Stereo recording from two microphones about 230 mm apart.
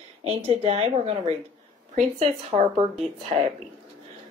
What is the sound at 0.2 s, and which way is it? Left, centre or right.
Speech, right.